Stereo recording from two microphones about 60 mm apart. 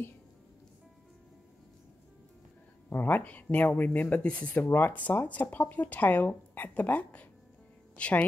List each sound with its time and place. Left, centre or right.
2.9 s speech: left